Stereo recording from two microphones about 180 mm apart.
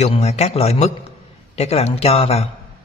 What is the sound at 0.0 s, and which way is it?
A man's voice, 35° left (ahead or behind).